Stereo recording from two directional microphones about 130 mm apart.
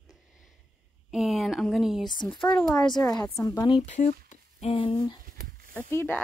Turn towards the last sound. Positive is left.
turn(degrees=15)  # may be behind; listen again after turning